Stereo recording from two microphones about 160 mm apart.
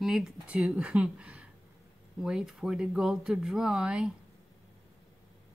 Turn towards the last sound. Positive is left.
turn(degrees=-5)  # may be behind; listen again after turning